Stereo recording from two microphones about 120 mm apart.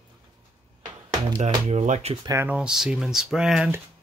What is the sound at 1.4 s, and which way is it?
Speech, 70° right (ahead or behind).